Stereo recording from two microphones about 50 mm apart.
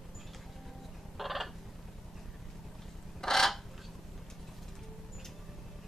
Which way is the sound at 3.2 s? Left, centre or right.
Centre.